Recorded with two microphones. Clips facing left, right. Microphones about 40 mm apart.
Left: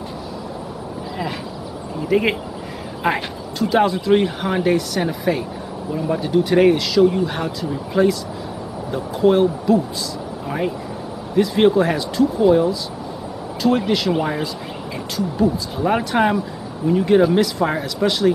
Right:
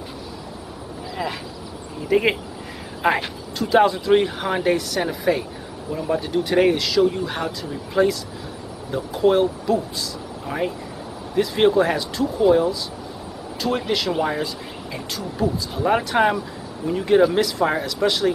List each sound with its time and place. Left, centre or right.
2.0 s speech: centre